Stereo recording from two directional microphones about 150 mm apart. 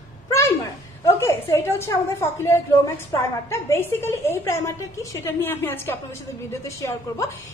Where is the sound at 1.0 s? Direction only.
20° left (ahead or behind).